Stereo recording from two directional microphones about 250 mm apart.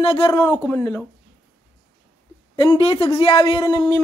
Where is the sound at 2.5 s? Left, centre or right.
Centre.